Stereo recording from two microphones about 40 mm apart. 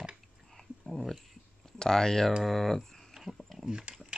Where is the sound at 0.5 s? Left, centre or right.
Centre.